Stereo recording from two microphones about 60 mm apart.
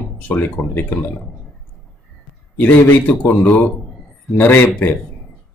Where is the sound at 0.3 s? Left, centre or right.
Left.